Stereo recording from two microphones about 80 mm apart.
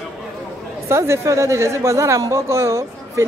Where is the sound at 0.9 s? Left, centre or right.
Right.